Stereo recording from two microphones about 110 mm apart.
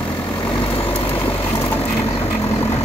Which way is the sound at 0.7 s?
60° left (ahead or behind).